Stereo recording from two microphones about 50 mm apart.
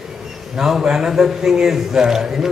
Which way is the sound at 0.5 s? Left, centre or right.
Centre.